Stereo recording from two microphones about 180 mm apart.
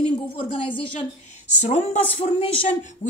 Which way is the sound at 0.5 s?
30° left (ahead or behind).